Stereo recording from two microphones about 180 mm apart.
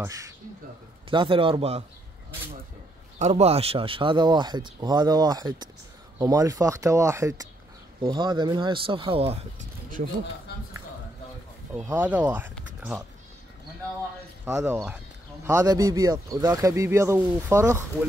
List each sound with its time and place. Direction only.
0.0 s speech: 20° right (ahead or behind)
1.1 s speech: 30° right (ahead or behind)
3.2 s speech: 35° right (ahead or behind)
11.7 s speech: 10° right (ahead or behind)
14.4 s speech: 15° right (ahead or behind)